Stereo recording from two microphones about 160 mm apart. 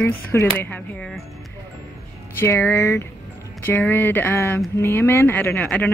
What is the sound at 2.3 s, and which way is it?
Speech, 15° left (ahead or behind).